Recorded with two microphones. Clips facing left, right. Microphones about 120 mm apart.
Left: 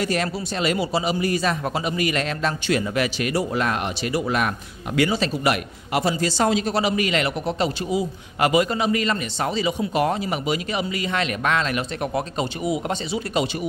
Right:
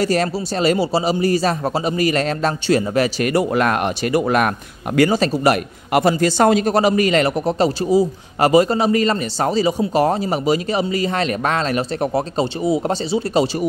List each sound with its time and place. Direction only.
0.0 s a man's voice: 35° right (ahead or behind)
3.3 s speech: 60° right (ahead or behind)
4.9 s speech: 45° right (ahead or behind)
5.9 s a man's voice: 55° right (ahead or behind); by 13.7 s 35° right (ahead or behind)